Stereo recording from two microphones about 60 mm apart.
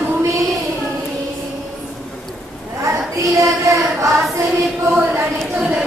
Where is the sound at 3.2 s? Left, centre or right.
Right.